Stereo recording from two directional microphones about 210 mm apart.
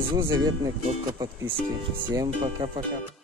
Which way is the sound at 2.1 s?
25° right (ahead or behind).